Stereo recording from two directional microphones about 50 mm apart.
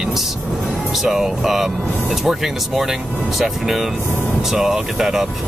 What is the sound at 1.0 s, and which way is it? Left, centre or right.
Speech, centre.